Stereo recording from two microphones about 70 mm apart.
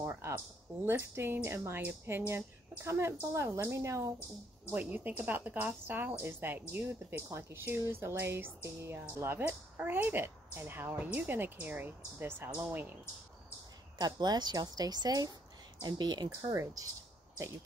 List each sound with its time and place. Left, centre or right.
0.0 s a sound: right
0.8 s speech: right
4.6 s a woman's voice: right
12.4 s speech: centre
13.9 s a woman's voice: right
15.8 s speech: right
16.5 s speech: right